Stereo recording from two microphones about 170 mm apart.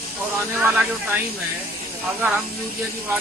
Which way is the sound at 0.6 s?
10° right (ahead or behind).